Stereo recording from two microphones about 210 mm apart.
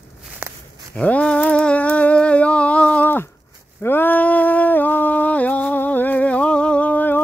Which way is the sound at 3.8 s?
10° left (ahead or behind).